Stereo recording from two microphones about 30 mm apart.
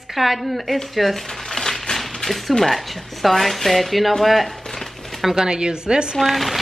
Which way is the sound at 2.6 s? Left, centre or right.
Centre.